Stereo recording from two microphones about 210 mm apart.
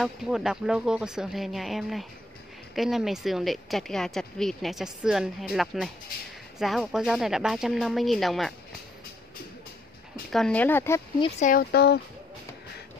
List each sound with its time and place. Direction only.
0.0 s a woman's voice: centre (ahead or behind)
10.3 s speech: 5° left (ahead or behind)
11.1 s speech: 35° left (ahead or behind); by 12.0 s 50° left (ahead or behind)